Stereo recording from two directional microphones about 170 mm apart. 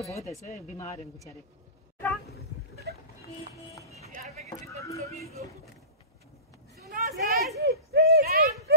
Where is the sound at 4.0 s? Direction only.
40° right (ahead or behind).